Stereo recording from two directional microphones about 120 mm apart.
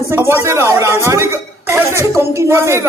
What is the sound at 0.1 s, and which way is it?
A man's voice, 20° right (ahead or behind).